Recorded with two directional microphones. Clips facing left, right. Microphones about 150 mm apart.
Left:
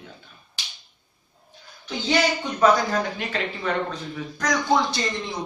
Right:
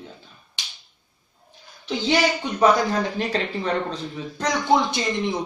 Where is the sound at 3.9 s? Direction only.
30° right (ahead or behind).